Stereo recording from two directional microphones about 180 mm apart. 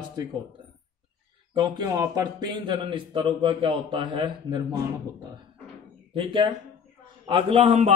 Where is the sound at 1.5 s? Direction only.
20° right (ahead or behind).